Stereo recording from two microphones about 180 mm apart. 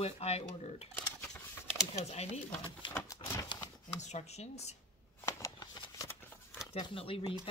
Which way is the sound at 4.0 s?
40° left (ahead or behind).